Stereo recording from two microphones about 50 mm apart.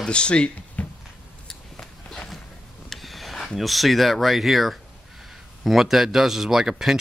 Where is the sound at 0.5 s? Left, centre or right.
Left.